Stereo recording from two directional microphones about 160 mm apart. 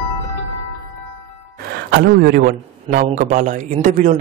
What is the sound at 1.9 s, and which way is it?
A man's voice, 70° right (ahead or behind).